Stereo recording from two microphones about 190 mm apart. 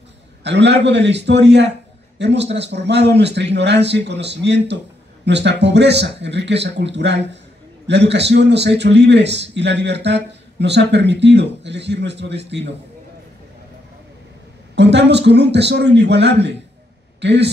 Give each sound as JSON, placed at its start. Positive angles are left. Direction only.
{"t": 0.4, "sound": "a man's voice", "side_deg": -65}
{"t": 14.8, "sound": "a man's voice", "side_deg": -65}